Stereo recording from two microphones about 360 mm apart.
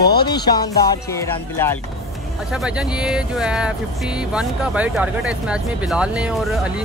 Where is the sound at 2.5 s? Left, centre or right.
Centre.